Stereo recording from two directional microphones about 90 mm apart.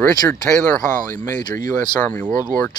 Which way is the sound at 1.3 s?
45° left (ahead or behind).